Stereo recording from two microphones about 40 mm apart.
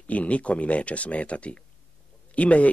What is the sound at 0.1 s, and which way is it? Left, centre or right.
Speech, left.